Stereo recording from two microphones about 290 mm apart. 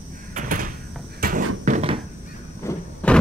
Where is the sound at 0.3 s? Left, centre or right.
Right.